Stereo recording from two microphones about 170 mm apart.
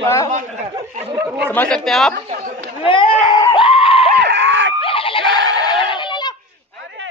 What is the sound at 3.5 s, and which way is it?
Goat, 30° left (ahead or behind).